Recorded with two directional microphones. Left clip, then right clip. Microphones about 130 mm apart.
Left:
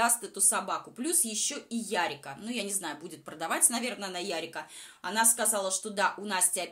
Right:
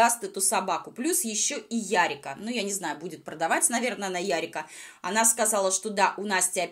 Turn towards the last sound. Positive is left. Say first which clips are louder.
# right 5 dB
turn(degrees=-25)  # may be behind; listen again after turning